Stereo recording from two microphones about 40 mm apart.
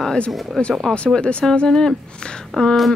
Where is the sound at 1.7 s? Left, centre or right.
Centre.